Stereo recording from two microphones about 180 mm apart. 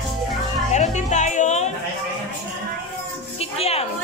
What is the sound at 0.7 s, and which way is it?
Music, 40° left (ahead or behind).